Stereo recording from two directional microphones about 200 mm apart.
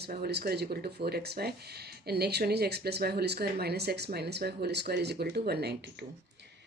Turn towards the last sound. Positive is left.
turn(degrees=-55)  # may be behind; listen again after turning